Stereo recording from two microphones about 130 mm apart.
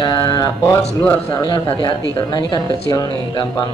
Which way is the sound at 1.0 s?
15° left (ahead or behind).